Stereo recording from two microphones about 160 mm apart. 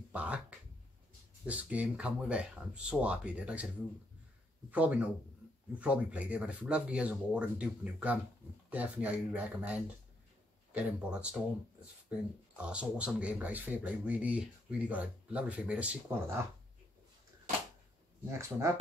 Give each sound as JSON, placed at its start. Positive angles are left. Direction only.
{"t": 0.1, "sound": "a sound", "side_deg": -10}
{"t": 1.4, "sound": "speech", "side_deg": -10}
{"t": 4.6, "sound": "speech", "side_deg": -10}
{"t": 12.5, "sound": "speech", "side_deg": -5}
{"t": 18.3, "sound": "speech", "side_deg": -20}